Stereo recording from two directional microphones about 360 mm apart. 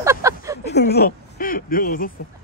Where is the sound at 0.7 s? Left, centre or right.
Left.